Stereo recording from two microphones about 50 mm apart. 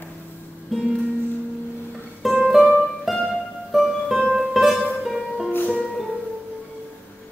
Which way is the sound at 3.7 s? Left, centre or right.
Centre.